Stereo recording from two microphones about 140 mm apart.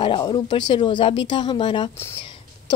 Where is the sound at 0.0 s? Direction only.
35° left (ahead or behind).